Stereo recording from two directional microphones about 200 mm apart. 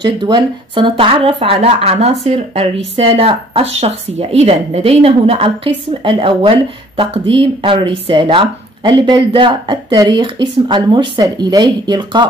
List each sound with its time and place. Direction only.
0.0 s speech: 20° right (ahead or behind)